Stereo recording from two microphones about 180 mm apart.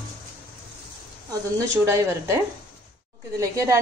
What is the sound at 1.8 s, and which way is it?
Speech, 15° right (ahead or behind).